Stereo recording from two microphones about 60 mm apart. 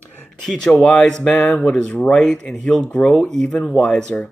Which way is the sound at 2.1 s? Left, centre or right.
Centre.